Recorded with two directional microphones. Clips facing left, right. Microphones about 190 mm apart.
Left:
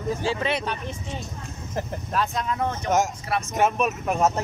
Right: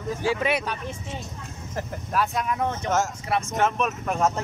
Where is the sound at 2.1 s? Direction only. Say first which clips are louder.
Right 2 dB; 5° right (ahead or behind).